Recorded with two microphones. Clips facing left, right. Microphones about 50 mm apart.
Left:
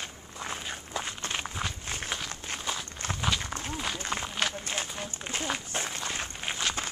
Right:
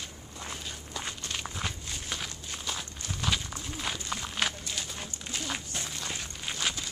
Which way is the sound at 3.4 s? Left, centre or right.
Left.